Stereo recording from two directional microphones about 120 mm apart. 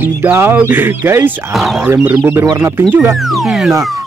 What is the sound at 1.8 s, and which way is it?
Speech, 15° right (ahead or behind).